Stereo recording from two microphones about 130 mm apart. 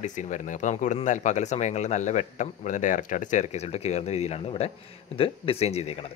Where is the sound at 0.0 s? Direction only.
70° left (ahead or behind); by 5.9 s 55° left (ahead or behind).